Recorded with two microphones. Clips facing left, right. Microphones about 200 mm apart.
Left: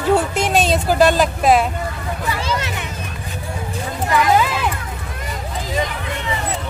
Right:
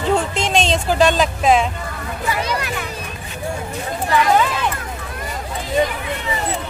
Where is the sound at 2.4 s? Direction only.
25° left (ahead or behind).